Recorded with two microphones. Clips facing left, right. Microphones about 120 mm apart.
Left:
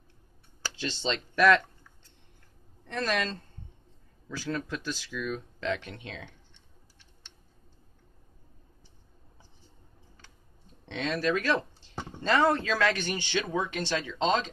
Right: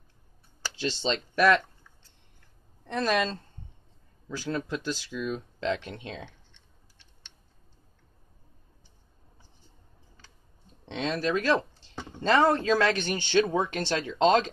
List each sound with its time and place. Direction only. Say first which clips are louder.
0.7 s speech: right 3 dB; 15° right (ahead or behind)
2.9 s speech: right 4 dB; 10° right (ahead or behind)
4.5 s speech: right 2 dB; 20° right (ahead or behind)
10.9 s speech: even; 25° right (ahead or behind)
13.1 s speech: right 6 dB; 35° right (ahead or behind)